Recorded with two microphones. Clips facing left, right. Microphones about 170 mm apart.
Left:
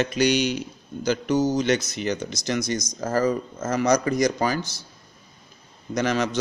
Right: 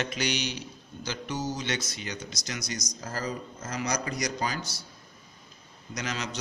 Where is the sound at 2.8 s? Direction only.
90° left.